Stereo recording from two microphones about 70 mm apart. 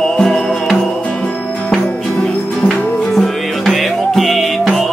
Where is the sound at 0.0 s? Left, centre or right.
Centre.